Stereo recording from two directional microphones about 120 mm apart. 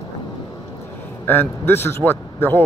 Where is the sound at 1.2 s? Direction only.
15° left (ahead or behind).